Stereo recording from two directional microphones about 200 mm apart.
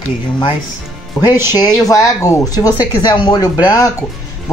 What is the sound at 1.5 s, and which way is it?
Speech, 20° left (ahead or behind).